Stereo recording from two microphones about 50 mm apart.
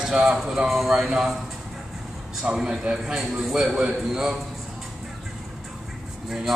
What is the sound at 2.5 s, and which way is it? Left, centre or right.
Speech, centre.